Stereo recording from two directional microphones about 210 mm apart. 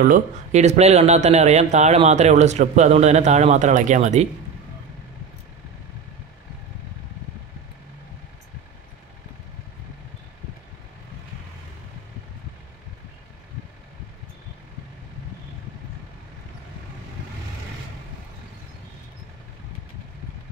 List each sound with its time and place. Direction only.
0.0 s speech: 35° right (ahead or behind)